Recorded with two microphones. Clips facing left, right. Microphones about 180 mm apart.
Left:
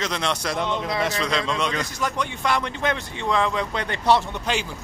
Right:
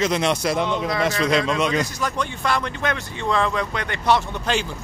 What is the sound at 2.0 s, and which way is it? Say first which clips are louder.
Speech: right 1 dB; 20° left (ahead or behind).